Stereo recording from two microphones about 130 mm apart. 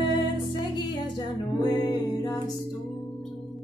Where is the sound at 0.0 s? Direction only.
35° left (ahead or behind).